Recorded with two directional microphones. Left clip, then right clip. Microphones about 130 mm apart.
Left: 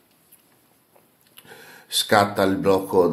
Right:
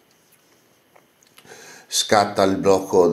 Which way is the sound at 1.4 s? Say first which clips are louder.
Right 2 dB; 20° left (ahead or behind).